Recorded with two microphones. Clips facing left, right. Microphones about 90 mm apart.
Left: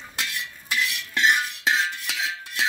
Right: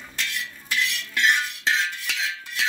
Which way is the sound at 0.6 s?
10° left (ahead or behind).